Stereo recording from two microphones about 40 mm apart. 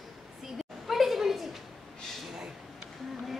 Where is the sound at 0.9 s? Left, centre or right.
Centre.